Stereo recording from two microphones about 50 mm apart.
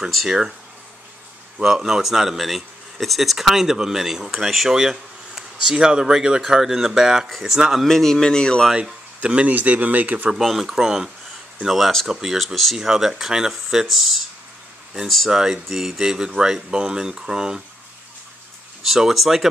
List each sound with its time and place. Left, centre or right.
1.6 s speech: centre
7.2 s speech: centre
7.5 s speech: centre
7.8 s speech: centre
9.2 s speech: right
10.3 s speech: centre
15.3 s speech: centre
18.9 s speech: centre